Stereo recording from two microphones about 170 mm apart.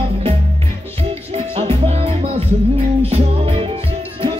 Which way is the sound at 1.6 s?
40° right (ahead or behind).